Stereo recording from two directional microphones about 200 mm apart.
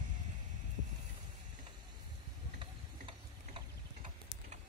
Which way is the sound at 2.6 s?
25° right (ahead or behind).